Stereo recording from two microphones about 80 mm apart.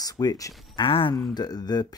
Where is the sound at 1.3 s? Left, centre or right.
Left.